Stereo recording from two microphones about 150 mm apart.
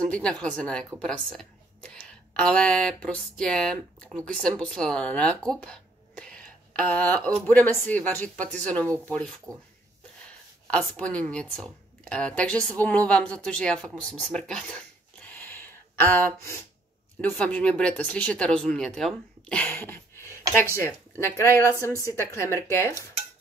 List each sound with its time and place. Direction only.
0.0 s speech: 5° left (ahead or behind)
10.7 s speech: 5° left (ahead or behind)
15.2 s a sound: 15° left (ahead or behind)
17.2 s speech: 10° left (ahead or behind)